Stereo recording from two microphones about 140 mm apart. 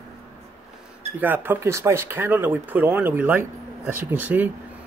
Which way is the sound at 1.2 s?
15° right (ahead or behind).